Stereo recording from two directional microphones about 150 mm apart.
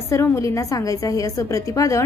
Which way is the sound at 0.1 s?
20° left (ahead or behind).